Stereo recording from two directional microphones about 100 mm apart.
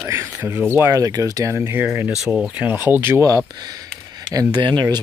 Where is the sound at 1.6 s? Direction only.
20° right (ahead or behind).